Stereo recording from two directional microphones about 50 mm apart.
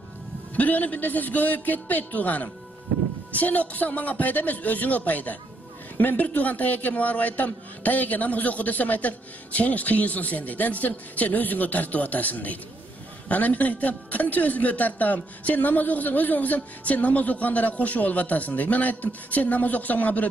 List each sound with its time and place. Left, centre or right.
0.6 s a man's voice: left